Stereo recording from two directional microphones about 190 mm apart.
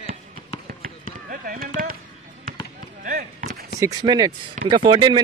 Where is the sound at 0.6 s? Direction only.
50° right (ahead or behind).